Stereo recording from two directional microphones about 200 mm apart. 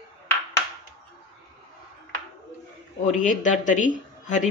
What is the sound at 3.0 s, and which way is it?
Speech, 40° left (ahead or behind).